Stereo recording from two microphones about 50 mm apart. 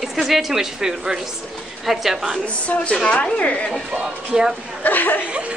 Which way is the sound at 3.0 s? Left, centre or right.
Centre.